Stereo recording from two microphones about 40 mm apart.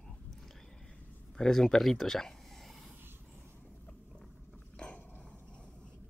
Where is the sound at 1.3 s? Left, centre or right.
Centre.